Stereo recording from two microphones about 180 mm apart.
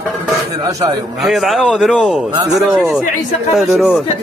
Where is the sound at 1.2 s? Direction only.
Centre (ahead or behind).